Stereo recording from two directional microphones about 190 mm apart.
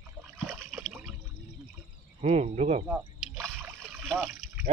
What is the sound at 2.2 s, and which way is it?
Cricket, 35° right (ahead or behind).